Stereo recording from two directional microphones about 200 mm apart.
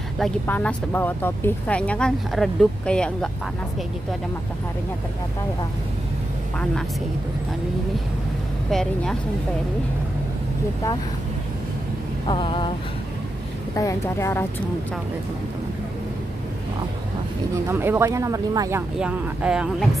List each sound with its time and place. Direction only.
0.2 s speech: 5° left (ahead or behind)
8.6 s speech: centre (ahead or behind)
12.3 s a sound: 25° left (ahead or behind)
13.7 s speech: 15° left (ahead or behind)
17.6 s speech: 10° right (ahead or behind)